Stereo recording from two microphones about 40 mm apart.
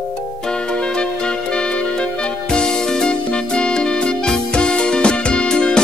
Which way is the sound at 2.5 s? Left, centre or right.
Left.